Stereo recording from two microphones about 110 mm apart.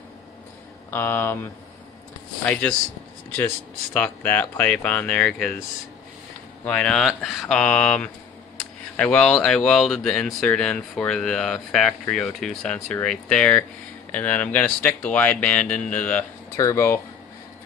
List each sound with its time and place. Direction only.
0.8 s speech: 20° left (ahead or behind)
3.9 s speech: 15° left (ahead or behind)
6.6 s speech: 10° left (ahead or behind)
16.5 s speech: 30° left (ahead or behind)